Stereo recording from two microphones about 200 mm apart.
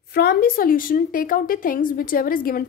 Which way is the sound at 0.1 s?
50° left (ahead or behind).